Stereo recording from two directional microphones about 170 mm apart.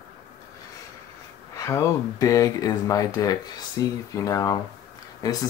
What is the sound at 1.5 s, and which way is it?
Speech, 15° left (ahead or behind).